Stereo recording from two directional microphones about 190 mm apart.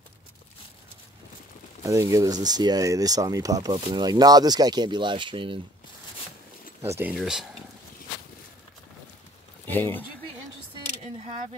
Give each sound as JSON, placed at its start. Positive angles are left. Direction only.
{"t": 1.8, "sound": "speech", "side_deg": -15}
{"t": 6.8, "sound": "speech", "side_deg": -10}
{"t": 9.7, "sound": "speech", "side_deg": 10}